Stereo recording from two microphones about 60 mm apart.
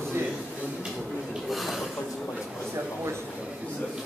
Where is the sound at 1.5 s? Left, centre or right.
Centre.